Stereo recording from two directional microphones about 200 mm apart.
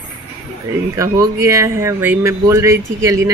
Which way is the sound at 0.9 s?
15° right (ahead or behind).